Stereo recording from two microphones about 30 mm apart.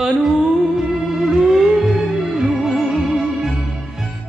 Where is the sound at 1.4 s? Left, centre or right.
Centre.